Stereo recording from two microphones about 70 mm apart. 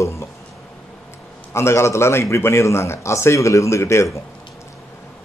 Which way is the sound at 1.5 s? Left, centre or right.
Left.